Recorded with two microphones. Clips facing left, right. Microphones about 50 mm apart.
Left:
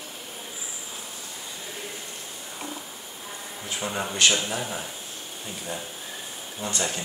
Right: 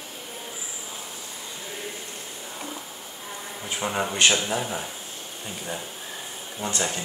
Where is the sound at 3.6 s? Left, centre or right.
Centre.